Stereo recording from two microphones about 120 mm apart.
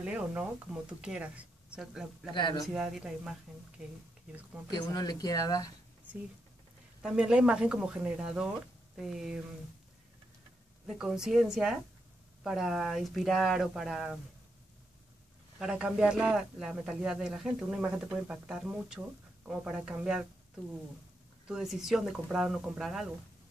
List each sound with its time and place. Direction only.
0.0 s speech: 10° right (ahead or behind)
4.6 s speech: 35° left (ahead or behind)
7.0 s speech: 5° right (ahead or behind)
10.9 s speech: 5° right (ahead or behind)
15.6 s speech: 5° right (ahead or behind)
21.5 s speech: 5° right (ahead or behind)